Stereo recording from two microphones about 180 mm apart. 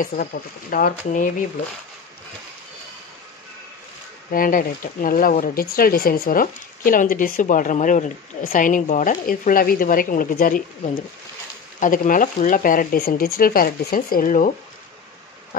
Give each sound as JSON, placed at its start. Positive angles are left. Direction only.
{"t": 0.0, "sound": "speech", "side_deg": 50}
{"t": 4.3, "sound": "speech", "side_deg": 50}
{"t": 11.8, "sound": "speech", "side_deg": 45}